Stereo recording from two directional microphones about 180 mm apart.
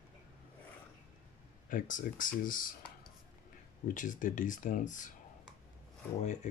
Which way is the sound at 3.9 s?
45° left (ahead or behind).